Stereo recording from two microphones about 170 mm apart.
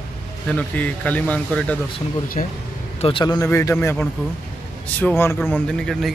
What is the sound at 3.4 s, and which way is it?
Speech, 15° left (ahead or behind).